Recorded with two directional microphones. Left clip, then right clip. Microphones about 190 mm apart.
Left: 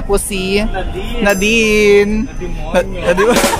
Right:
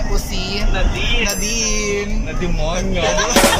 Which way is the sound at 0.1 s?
65° left (ahead or behind).